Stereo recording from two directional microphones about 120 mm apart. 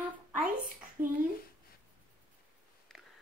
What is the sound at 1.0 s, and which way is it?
Speech, 20° right (ahead or behind).